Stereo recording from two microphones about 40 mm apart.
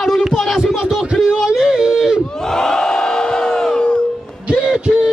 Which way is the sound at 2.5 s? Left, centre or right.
Centre.